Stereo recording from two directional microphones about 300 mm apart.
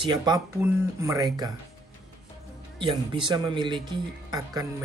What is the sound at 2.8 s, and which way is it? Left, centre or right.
Speech, centre.